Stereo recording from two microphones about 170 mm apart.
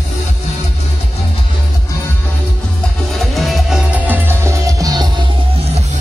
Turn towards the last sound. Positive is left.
turn(degrees=-40)  # may be behind; listen again after turning